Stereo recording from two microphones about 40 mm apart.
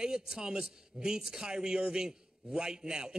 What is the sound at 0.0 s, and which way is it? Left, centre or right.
A man's voice, centre.